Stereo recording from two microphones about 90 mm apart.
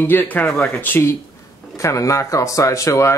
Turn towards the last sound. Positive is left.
turn(degrees=35)  # may be behind; listen again after turning